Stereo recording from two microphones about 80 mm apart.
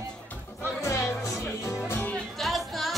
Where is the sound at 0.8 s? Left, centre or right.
Left.